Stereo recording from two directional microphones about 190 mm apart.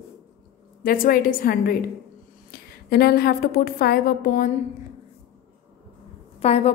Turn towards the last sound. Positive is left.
turn(degrees=35)  # may be behind; listen again after turning